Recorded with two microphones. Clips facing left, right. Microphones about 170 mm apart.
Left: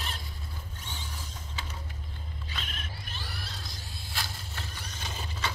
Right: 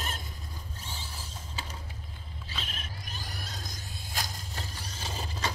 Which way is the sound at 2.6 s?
35° right (ahead or behind).